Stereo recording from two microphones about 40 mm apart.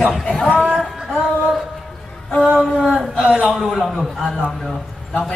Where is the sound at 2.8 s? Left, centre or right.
Centre.